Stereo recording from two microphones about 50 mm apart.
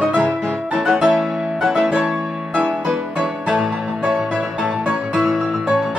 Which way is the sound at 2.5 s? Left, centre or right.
Right.